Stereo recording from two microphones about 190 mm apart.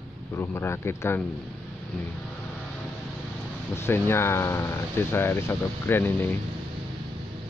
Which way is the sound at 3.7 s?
10° left (ahead or behind).